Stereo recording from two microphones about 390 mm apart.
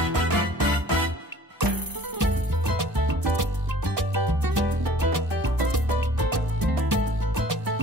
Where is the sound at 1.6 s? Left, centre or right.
Right.